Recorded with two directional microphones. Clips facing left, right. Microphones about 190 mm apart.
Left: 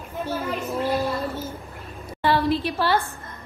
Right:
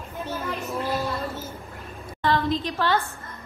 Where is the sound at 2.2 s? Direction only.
10° left (ahead or behind).